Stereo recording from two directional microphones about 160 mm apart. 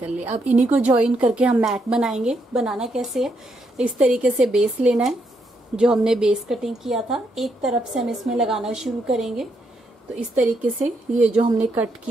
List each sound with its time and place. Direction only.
0.3 s speech: 45° right (ahead or behind)
0.7 s a woman's voice: 5° right (ahead or behind)
11.3 s speech: 45° right (ahead or behind)